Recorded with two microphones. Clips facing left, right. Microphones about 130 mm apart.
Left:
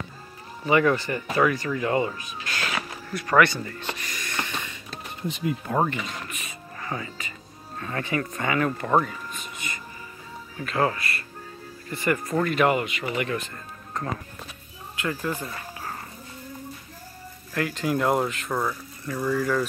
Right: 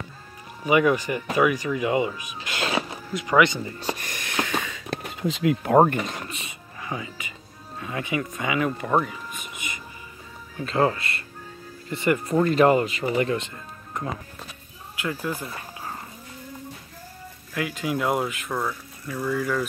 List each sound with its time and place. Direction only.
0.7 s speech: 10° right (ahead or behind)
3.8 s speech: 45° right (ahead or behind)
4.6 s a sound: 55° right (ahead or behind)
5.1 s speech: 90° right; by 6.1 s 45° right (ahead or behind)
6.2 s speech: 30° right (ahead or behind)
6.8 s speech: 15° right (ahead or behind)
10.6 s speech: 25° right (ahead or behind)
15.0 s speech: 5° right (ahead or behind)
17.6 s speech: 5° right (ahead or behind)